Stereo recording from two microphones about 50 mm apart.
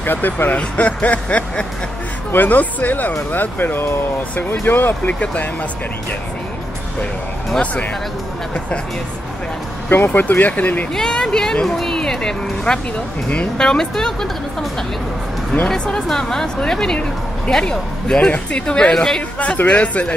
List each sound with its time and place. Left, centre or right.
0.0 s speech: left
0.6 s speech: left
5.2 s speech: left
9.8 s speech: left
11.0 s speech: centre
15.7 s speech: centre
19.4 s speech: left